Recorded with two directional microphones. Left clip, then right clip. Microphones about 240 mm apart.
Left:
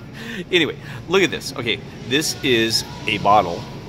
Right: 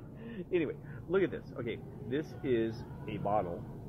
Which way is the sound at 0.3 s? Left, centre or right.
Centre.